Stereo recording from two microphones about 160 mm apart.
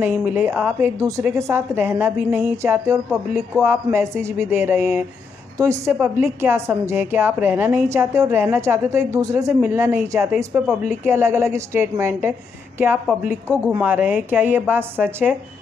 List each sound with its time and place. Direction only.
0.0 s a woman's voice: 10° right (ahead or behind)
10.3 s speech: 5° right (ahead or behind)
11.1 s a woman's voice: 15° right (ahead or behind)